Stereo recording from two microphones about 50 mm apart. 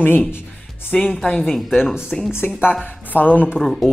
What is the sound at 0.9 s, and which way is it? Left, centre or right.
Speech, centre.